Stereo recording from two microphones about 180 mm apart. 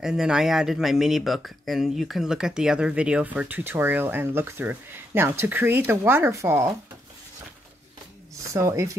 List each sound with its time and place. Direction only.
0.0 s speech: 5° right (ahead or behind)
8.5 s speech: 15° right (ahead or behind)